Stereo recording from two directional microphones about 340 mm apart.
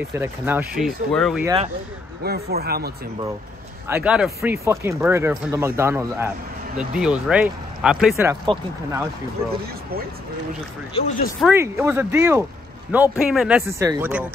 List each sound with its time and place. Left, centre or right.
0.1 s speech: centre
2.2 s speech: right
3.8 s speech: centre
11.0 s speech: left
11.4 s speech: centre